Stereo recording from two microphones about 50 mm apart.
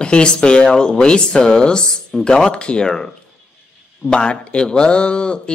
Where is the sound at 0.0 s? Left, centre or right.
Centre.